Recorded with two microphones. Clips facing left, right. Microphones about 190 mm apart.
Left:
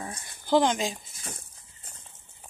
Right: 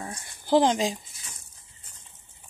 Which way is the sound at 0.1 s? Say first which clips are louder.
Right 2 dB; 30° right (ahead or behind).